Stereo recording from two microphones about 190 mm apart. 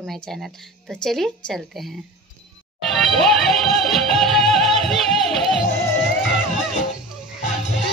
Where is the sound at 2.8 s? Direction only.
Centre (ahead or behind).